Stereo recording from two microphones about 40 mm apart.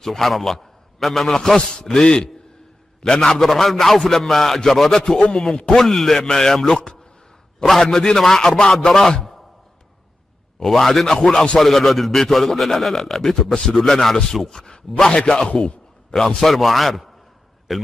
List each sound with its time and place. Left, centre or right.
0.0 s a man's voice: centre
10.6 s a man's voice: centre
16.3 s speech: centre